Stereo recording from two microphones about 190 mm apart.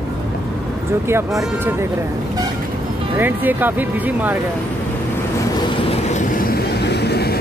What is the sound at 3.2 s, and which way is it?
Speech, 10° right (ahead or behind).